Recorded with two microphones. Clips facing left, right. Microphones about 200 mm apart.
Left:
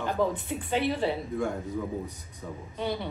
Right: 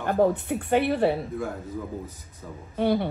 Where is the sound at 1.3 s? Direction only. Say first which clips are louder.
Left 1 dB; centre (ahead or behind).